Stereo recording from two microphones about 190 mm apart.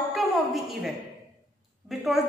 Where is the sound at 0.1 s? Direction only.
Centre (ahead or behind).